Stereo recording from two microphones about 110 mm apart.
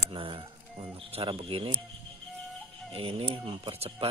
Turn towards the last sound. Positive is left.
turn(degrees=-55)  # may be behind; listen again after turning